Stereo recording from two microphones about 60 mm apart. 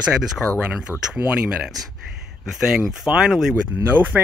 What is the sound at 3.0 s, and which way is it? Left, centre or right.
Speech, centre.